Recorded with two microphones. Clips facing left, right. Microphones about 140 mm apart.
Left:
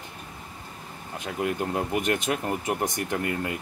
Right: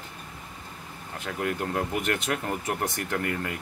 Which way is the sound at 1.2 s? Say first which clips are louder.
Left 2 dB; 15° left (ahead or behind).